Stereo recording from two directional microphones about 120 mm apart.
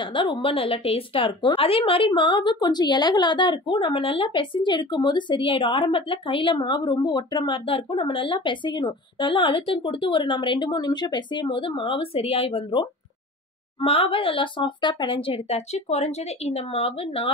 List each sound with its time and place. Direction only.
0.0 s a woman's voice: 40° left (ahead or behind)